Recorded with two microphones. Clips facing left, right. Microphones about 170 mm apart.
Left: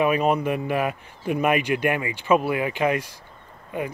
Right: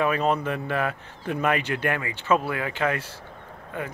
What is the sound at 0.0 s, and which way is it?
Speech, 15° left (ahead or behind).